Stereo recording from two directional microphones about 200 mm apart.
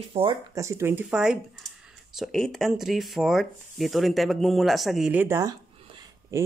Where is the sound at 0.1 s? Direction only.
30° right (ahead or behind).